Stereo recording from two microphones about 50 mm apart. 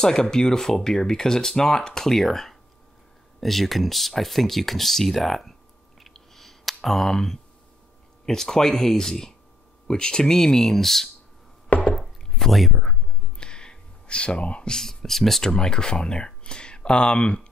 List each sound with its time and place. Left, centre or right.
0.0 s speech: centre
5.9 s clicking: centre
8.3 s speech: centre
11.8 s chopping: centre
13.4 s a sound: centre
14.8 s speech: centre
15.5 s speech: centre